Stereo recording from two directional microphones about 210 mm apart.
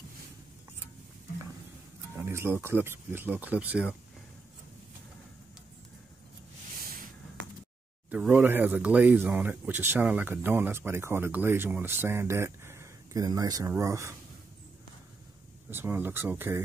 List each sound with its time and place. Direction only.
2.2 s speech: 10° right (ahead or behind)
6.8 s a sound: 40° right (ahead or behind)
8.1 s speech: 5° right (ahead or behind)
15.7 s speech: 10° right (ahead or behind)